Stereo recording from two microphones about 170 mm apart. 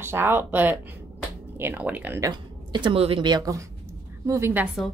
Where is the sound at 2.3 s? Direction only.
30° right (ahead or behind); by 4.9 s 5° right (ahead or behind).